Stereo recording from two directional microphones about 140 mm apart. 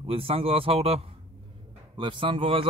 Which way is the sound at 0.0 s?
45° right (ahead or behind).